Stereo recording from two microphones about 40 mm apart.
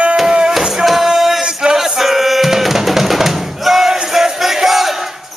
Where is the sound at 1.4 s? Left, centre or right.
Right.